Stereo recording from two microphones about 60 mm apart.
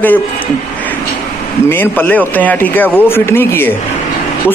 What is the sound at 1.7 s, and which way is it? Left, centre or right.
A man's voice, left.